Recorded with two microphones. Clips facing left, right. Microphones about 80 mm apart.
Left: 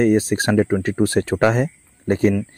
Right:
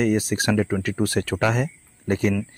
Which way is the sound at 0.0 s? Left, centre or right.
Left.